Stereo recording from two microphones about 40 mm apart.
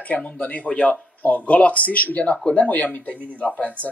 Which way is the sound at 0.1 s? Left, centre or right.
Left.